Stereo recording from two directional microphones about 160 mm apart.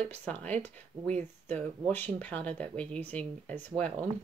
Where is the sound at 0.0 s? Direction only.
10° left (ahead or behind).